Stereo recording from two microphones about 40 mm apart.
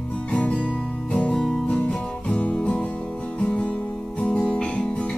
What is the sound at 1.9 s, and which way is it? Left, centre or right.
Music, left.